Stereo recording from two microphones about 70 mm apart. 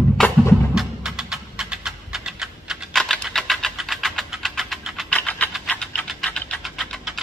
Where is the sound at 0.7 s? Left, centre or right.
Centre.